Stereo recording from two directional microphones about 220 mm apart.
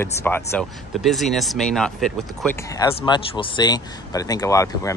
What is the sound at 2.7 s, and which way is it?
Speech, 20° left (ahead or behind).